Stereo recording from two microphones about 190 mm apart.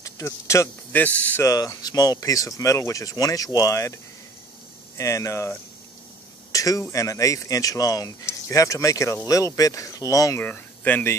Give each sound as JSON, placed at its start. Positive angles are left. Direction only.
{"t": 0.0, "sound": "speech", "side_deg": 15}